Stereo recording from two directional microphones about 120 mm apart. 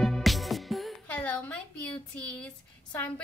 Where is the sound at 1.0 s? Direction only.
10° left (ahead or behind).